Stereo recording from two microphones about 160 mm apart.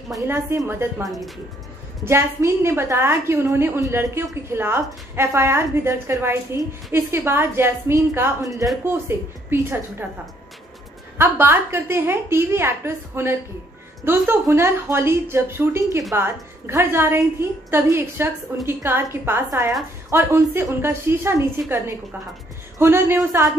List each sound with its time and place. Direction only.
0.3 s a woman's voice: 15° right (ahead or behind)
1.0 s speech: centre (ahead or behind)
2.0 s a woman's voice: 15° right (ahead or behind)
11.1 s a woman's voice: 15° right (ahead or behind)